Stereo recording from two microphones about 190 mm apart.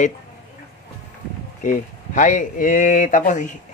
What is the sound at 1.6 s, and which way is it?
Speech, 40° left (ahead or behind).